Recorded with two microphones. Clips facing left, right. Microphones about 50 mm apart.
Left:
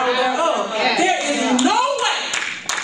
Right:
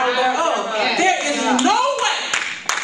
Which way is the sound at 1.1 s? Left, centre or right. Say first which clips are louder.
Even; right.